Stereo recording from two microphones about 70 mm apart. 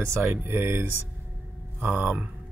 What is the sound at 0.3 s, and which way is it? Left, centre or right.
Speech, right.